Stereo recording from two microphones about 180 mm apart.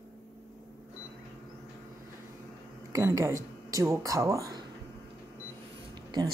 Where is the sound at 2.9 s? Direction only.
15° right (ahead or behind).